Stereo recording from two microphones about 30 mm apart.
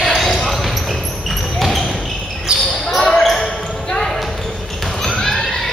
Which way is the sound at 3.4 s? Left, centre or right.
Centre.